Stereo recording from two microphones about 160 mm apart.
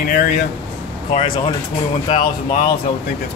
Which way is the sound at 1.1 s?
40° left (ahead or behind).